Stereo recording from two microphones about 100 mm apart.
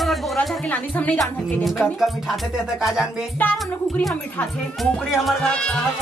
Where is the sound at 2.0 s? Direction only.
5° right (ahead or behind).